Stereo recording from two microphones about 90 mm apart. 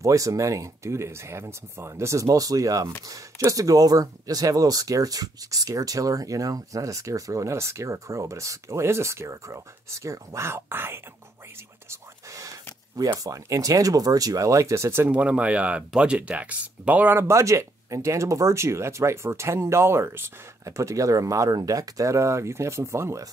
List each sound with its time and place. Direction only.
0.0 s speech: 40° right (ahead or behind)
11.9 s whispering: 35° right (ahead or behind)
12.9 s speech: 40° right (ahead or behind)
15.0 s speech: 15° right (ahead or behind); by 23.2 s 30° right (ahead or behind)